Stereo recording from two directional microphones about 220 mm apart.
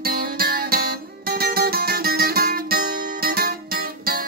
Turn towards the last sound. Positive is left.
turn(degrees=-45)  # may be behind; listen again after turning